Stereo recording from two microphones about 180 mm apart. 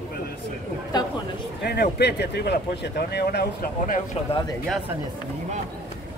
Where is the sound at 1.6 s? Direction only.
60° left (ahead or behind).